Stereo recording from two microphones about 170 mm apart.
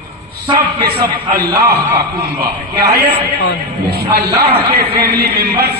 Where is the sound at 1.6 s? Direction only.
65° right (ahead or behind).